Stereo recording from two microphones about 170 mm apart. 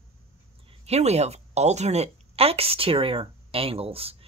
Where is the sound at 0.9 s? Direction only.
40° right (ahead or behind).